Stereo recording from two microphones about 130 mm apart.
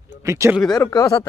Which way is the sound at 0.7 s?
30° left (ahead or behind).